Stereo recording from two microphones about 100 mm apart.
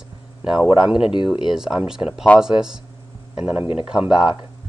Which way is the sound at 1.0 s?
55° left (ahead or behind).